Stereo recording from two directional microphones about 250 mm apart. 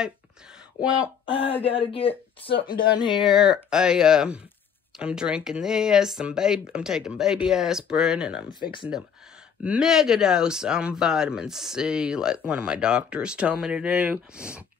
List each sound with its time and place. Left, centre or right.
0.8 s speech: centre
1.6 s speech: left
3.3 s speech: centre
8.5 s speech: centre
9.6 s speech: centre